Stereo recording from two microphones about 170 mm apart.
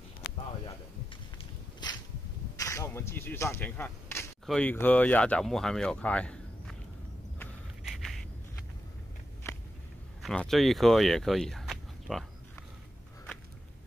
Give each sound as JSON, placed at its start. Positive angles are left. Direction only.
{"t": 1.4, "sound": "a sound", "side_deg": 25}
{"t": 2.5, "sound": "whip", "side_deg": 20}
{"t": 4.5, "sound": "speech", "side_deg": 10}
{"t": 7.8, "sound": "a sound", "side_deg": 0}
{"t": 9.5, "sound": "biting", "side_deg": 15}
{"t": 10.2, "sound": "speech", "side_deg": 0}